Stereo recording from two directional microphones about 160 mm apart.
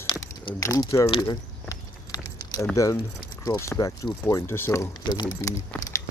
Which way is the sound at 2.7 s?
20° left (ahead or behind).